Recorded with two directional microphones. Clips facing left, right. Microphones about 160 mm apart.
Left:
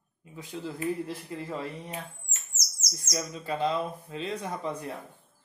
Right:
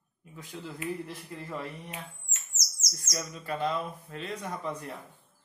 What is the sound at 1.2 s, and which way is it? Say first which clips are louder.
Speech: left 3 dB; 15° left (ahead or behind).